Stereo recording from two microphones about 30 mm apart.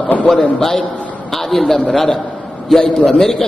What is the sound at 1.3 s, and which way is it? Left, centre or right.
Speech, centre.